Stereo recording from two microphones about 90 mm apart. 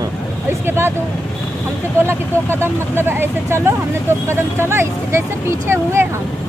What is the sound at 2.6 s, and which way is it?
Speech, 25° right (ahead or behind).